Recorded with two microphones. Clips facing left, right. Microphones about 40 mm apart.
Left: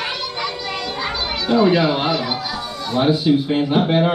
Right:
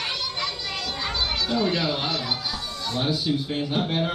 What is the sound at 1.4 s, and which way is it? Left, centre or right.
Speech, left.